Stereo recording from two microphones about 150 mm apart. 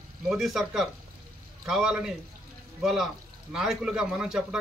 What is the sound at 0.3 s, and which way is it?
A man's voice, centre (ahead or behind).